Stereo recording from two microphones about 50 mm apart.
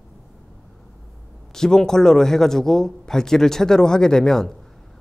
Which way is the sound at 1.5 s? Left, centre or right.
Centre.